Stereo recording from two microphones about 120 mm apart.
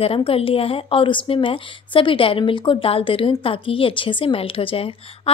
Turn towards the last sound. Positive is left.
turn(degrees=50)  # may be behind; listen again after turning